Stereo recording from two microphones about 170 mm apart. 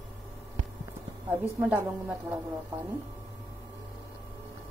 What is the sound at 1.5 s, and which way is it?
Speech, 10° right (ahead or behind).